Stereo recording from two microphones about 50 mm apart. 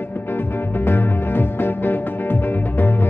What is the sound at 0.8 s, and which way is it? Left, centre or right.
Music, left.